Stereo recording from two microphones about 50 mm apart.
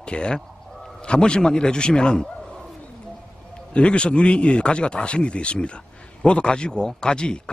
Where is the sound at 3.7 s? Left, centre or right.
Left.